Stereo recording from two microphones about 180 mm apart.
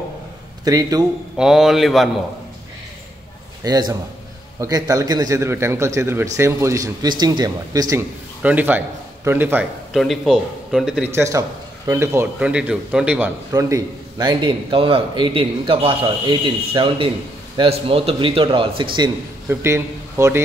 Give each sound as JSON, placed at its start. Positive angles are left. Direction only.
{"t": 0.7, "sound": "a man's voice", "side_deg": -20}
{"t": 1.3, "sound": "a man's voice", "side_deg": -5}
{"t": 3.6, "sound": "a man's voice", "side_deg": -20}
{"t": 8.4, "sound": "a man's voice", "side_deg": -10}
{"t": 9.9, "sound": "a man's voice", "side_deg": 0}
{"t": 11.1, "sound": "a man's voice", "side_deg": -15}
{"t": 13.5, "sound": "a man's voice", "side_deg": -20}
{"t": 19.5, "sound": "a man's voice", "side_deg": -15}